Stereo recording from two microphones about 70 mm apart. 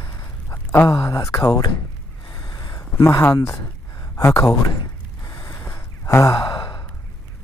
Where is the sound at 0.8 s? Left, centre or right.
Left.